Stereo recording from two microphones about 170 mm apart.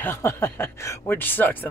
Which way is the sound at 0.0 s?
15° left (ahead or behind).